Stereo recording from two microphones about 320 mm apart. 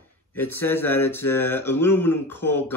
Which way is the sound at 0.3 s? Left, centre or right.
Centre.